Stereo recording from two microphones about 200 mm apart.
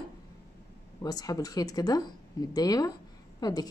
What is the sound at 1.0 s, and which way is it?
A woman's voice, 20° left (ahead or behind).